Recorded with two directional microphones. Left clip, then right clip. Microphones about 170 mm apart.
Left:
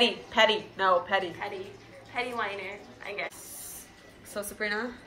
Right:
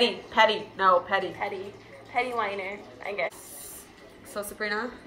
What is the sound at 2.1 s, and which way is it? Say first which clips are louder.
A woman's voice: right 4 dB; 20° right (ahead or behind).